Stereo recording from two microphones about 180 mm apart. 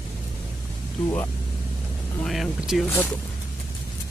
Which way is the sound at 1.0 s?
15° left (ahead or behind).